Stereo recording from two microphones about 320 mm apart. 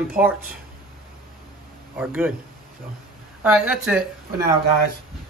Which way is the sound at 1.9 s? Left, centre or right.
Centre.